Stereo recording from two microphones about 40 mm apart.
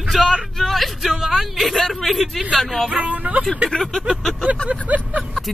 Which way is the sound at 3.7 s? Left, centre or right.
Centre.